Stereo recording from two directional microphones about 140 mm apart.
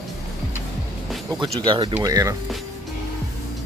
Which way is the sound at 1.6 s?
35° right (ahead or behind).